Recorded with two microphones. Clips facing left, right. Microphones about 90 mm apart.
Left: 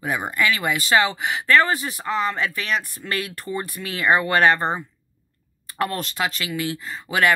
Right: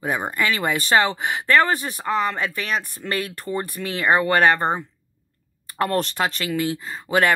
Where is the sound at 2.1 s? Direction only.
40° right (ahead or behind).